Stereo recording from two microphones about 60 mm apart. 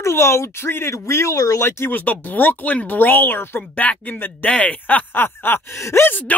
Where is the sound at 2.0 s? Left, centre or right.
Left.